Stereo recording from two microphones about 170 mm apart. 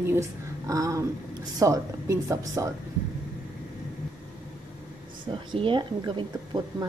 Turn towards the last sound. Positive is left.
turn(degrees=-30)  # may be behind; listen again after turning